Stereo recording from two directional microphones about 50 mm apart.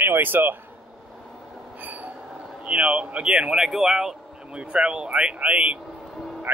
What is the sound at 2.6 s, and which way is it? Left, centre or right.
Speech, right.